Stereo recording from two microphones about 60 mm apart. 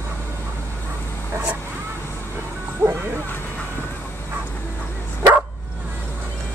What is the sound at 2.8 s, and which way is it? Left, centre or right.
Music, right.